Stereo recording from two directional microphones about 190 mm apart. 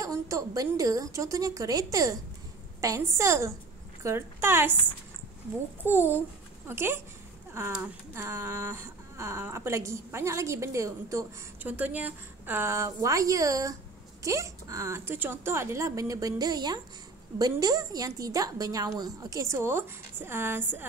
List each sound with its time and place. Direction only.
0.0 s speech: 15° right (ahead or behind)
5.9 s a woman's voice: 10° right (ahead or behind)